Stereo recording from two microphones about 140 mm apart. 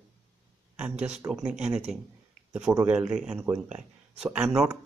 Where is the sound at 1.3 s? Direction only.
5° right (ahead or behind).